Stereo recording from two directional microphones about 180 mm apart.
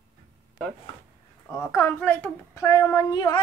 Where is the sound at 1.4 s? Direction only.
10° left (ahead or behind).